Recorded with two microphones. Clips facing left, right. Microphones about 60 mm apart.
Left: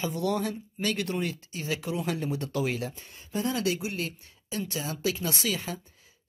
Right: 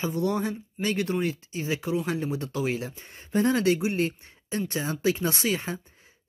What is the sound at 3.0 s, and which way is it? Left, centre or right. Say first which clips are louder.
Speech: right 6 dB; right.